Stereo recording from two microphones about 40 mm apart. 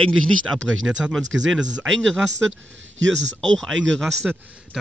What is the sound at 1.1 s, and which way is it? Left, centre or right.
Speech, centre.